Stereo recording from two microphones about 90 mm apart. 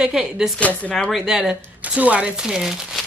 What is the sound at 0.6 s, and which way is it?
Speech, 15° left (ahead or behind).